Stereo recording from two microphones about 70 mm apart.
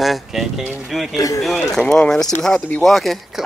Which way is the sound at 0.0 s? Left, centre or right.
Centre.